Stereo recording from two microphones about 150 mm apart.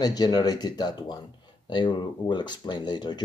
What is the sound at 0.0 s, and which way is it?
Speech, 25° left (ahead or behind).